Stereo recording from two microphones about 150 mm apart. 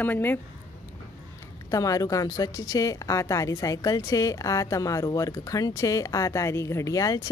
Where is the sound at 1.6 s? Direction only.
20° left (ahead or behind).